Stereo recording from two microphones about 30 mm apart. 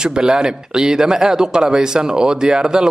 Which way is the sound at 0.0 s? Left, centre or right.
Right.